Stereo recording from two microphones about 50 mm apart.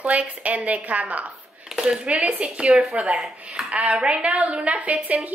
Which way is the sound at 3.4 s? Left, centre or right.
Centre.